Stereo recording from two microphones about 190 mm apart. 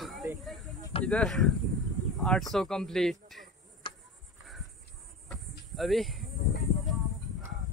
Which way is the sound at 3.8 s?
25° left (ahead or behind).